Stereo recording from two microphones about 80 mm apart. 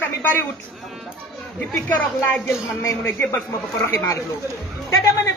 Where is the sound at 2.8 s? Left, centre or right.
Left.